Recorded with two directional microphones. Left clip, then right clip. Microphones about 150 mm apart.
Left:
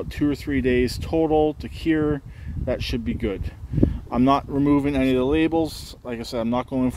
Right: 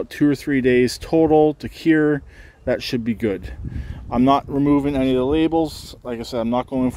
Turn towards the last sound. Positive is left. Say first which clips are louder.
# right 3 dB
turn(degrees=-25)  # may be behind; listen again after turning